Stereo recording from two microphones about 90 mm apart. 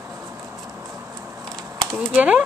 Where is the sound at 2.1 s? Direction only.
15° right (ahead or behind).